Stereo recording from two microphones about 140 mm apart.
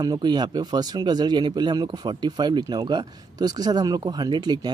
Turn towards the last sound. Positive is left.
turn(degrees=-30)  # may be behind; listen again after turning